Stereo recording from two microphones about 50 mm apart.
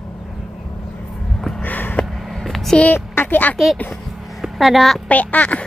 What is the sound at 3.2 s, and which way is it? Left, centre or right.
Speech, left.